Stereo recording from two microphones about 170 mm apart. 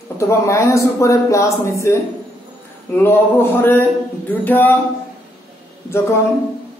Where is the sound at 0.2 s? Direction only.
15° left (ahead or behind).